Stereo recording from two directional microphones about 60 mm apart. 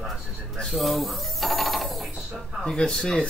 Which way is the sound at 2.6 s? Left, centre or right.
Centre.